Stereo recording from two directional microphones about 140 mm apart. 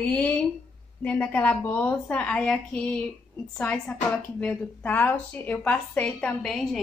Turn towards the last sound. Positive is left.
turn(degrees=0)  # may be behind; listen again after turning